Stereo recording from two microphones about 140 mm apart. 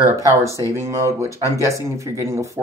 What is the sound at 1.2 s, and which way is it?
Speech, 20° left (ahead or behind).